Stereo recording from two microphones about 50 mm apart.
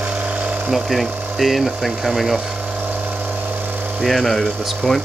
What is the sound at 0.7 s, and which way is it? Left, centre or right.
Speech, centre.